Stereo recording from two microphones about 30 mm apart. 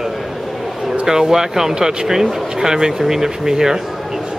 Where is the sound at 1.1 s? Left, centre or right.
Centre.